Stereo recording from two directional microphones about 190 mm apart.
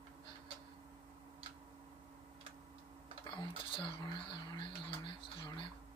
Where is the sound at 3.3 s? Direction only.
25° left (ahead or behind).